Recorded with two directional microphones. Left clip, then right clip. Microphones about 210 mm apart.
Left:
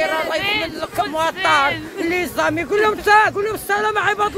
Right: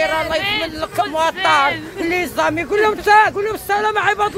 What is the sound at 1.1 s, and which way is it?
Speech, centre (ahead or behind).